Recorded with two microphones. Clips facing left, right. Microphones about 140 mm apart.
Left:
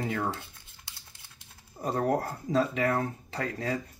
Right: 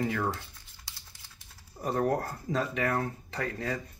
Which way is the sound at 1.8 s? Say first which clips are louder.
Left 1 dB; 35° left (ahead or behind).